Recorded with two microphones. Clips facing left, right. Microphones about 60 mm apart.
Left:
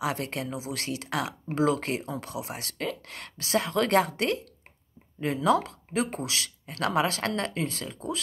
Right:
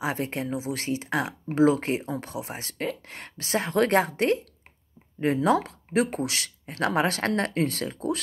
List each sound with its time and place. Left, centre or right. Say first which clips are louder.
0.0 s speech: right 2 dB; right